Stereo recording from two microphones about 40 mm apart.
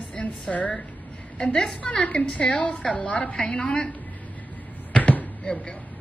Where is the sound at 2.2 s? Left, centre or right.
Left.